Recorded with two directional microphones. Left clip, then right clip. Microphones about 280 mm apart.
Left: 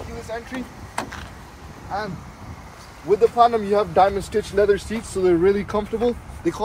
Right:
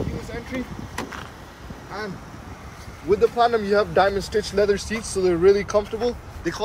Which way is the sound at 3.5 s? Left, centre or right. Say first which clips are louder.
Left 1 dB; left.